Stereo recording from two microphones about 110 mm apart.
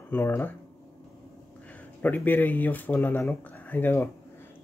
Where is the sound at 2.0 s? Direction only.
15° left (ahead or behind).